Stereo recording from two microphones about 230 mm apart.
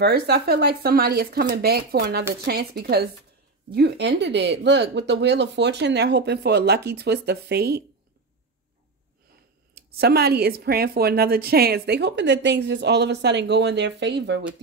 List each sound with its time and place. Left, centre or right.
0.0 s a woman's voice: right
9.8 s a woman's voice: right